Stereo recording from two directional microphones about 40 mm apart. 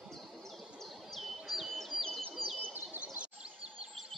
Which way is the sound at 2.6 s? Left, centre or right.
Right.